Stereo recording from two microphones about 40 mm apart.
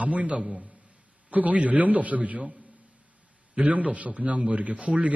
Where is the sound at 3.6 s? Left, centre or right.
Right.